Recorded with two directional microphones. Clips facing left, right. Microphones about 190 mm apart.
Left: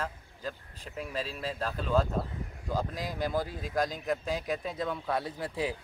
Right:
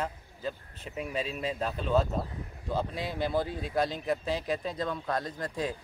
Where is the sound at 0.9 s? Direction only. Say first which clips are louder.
Right 3 dB; 5° right (ahead or behind).